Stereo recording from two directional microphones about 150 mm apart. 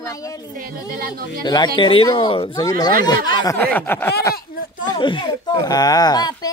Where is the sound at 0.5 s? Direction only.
75° right (ahead or behind).